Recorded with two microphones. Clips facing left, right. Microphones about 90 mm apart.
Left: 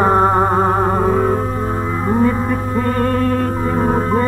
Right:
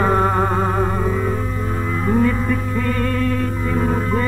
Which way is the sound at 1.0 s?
50° left (ahead or behind).